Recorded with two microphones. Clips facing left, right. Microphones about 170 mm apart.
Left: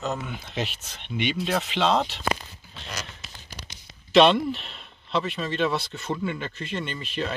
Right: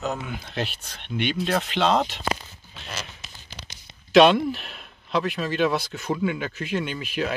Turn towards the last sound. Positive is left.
turn(degrees=-5)  # may be behind; listen again after turning